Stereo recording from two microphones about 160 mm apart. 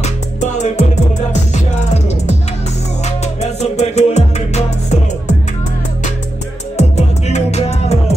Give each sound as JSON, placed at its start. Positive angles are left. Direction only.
{"t": 0.0, "sound": "music", "side_deg": 50}
{"t": 3.3, "sound": "music", "side_deg": 45}
{"t": 6.8, "sound": "music", "side_deg": 45}